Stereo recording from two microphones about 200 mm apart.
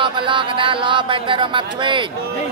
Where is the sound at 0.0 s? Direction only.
25° right (ahead or behind).